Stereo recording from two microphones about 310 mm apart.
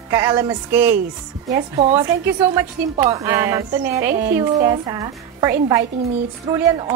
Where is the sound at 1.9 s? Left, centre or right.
Centre.